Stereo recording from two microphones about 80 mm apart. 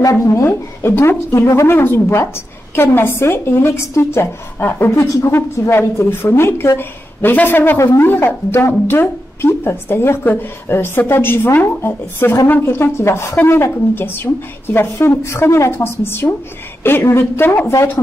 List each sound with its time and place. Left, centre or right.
0.0 s speech: left
5.0 s a woman's voice: left
5.3 s a woman's voice: left